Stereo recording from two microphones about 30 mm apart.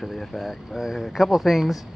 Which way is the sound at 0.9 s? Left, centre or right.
Centre.